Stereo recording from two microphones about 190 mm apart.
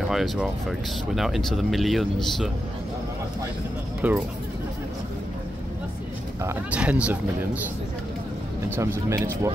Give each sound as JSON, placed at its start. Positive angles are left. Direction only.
{"t": 0.0, "sound": "speech", "side_deg": 0}
{"t": 4.0, "sound": "speech", "side_deg": -5}
{"t": 6.4, "sound": "speech", "side_deg": -10}
{"t": 8.7, "sound": "speech", "side_deg": -15}